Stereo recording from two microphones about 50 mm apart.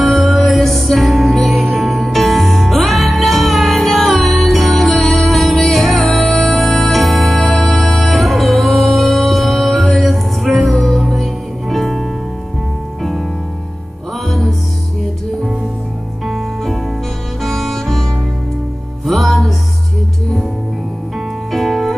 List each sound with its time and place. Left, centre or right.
0.0 s music: centre
1.5 s music: right
2.0 s music: centre
14.2 s music: centre
16.3 s music: centre
19.0 s music: centre
21.5 s music: centre